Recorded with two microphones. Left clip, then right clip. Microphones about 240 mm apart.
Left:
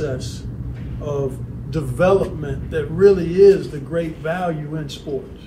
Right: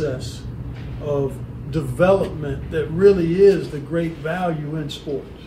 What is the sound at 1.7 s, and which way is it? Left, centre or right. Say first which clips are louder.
A man's voice: even; centre.